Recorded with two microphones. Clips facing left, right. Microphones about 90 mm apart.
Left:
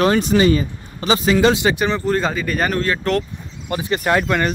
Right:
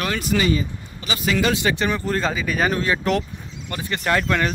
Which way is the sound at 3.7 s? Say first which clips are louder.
Left 4 dB; 15° left (ahead or behind).